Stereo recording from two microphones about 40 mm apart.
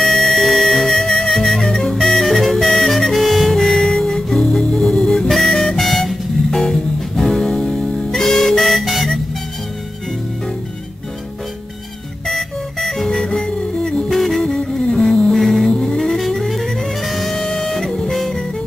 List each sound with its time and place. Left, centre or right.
0.0 s music: centre
5.8 s music: centre
8.1 s music: centre
12.3 s music: centre
13.3 s music: left
14.1 s music: centre
14.4 s music: left
15.3 s music: centre
15.7 s music: left
16.2 s music: centre